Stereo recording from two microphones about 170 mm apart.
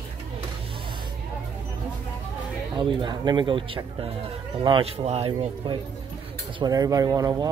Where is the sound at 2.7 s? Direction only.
30° right (ahead or behind).